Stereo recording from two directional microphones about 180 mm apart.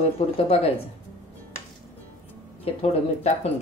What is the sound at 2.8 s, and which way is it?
Speech, 35° left (ahead or behind).